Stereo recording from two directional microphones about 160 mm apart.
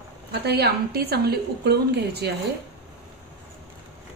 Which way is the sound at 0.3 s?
85° right.